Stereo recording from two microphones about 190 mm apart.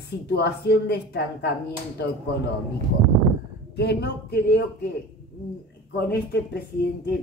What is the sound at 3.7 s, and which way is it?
Speech, 60° left (ahead or behind).